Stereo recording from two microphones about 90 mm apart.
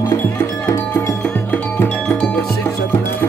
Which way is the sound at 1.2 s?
15° left (ahead or behind).